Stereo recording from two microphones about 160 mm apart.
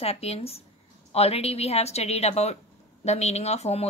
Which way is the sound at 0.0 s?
40° left (ahead or behind).